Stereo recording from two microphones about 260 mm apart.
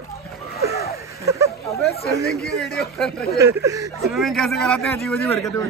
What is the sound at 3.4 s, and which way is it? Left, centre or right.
Speech, centre.